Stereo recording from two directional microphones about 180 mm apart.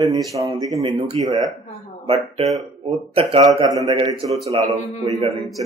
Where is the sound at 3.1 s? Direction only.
30° right (ahead or behind).